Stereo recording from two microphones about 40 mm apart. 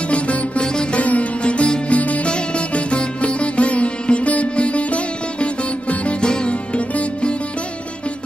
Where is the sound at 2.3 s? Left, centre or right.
Left.